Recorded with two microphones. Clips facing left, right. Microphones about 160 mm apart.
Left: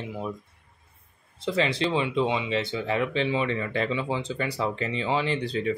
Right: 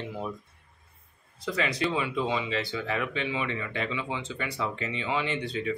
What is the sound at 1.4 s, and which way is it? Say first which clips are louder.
Speech: left 4 dB; 25° left (ahead or behind).